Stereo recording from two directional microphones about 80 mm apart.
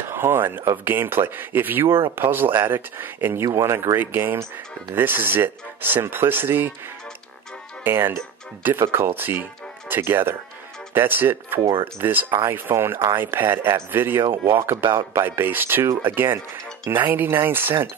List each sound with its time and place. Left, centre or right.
0.1 s speech: right
3.4 s speech: right
7.8 s speech: right